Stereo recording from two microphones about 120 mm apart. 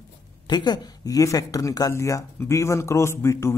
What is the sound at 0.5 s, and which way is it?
Speech, 35° left (ahead or behind).